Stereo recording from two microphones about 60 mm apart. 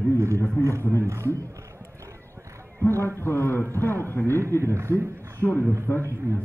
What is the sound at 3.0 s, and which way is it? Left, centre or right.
A man's voice, left.